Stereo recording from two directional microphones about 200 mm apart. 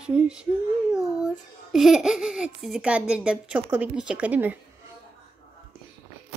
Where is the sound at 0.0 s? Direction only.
5° right (ahead or behind).